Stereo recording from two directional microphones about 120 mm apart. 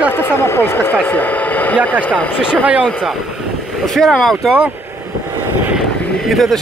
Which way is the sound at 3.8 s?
5° left (ahead or behind).